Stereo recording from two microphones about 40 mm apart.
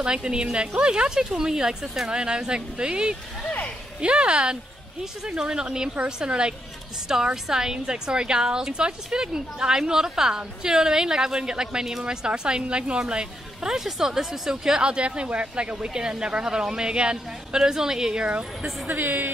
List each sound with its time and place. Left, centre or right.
0.0 s a woman's voice: right
12.3 s a woman's voice: right
18.3 s speech: right